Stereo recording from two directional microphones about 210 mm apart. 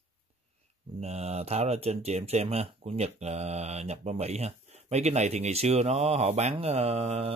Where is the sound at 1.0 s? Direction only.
30° right (ahead or behind).